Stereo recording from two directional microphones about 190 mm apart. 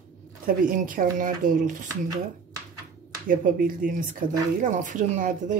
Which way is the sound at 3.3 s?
45° right (ahead or behind).